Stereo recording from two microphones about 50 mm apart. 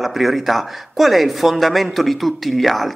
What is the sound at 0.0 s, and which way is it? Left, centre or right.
Speech, centre.